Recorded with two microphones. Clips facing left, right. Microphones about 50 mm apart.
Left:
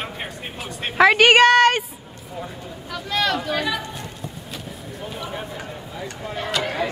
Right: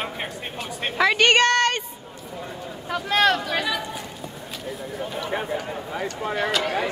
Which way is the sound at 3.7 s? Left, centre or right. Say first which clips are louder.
Left 1 dB; centre.